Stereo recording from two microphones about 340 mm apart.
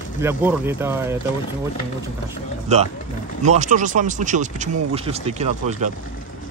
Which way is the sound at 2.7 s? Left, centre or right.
Centre.